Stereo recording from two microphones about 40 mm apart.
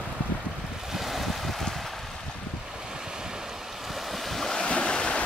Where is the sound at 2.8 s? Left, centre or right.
Centre.